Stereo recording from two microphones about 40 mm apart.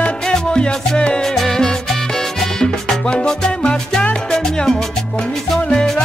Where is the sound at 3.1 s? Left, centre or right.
Left.